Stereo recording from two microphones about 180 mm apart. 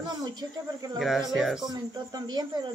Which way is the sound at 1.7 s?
20° right (ahead or behind).